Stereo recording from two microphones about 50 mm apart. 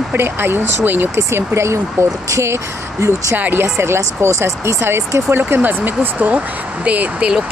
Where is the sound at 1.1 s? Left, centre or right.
Right.